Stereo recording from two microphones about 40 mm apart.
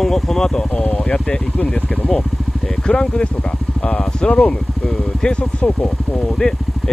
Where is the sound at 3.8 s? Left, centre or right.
Left.